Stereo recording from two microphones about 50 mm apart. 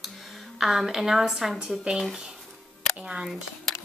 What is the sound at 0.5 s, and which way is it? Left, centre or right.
A woman's voice, centre.